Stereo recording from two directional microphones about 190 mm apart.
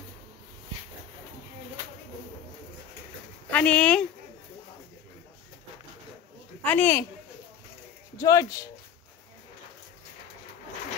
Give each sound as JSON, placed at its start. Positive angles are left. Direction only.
{"t": 3.4, "sound": "speech", "side_deg": 5}
{"t": 6.6, "sound": "speech", "side_deg": 10}
{"t": 8.2, "sound": "speech", "side_deg": 15}